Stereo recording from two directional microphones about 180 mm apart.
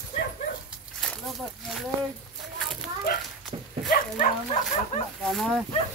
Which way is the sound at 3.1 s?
55° left (ahead or behind).